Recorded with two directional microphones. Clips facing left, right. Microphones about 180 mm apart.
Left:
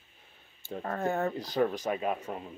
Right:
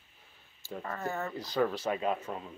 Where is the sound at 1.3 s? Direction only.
20° left (ahead or behind).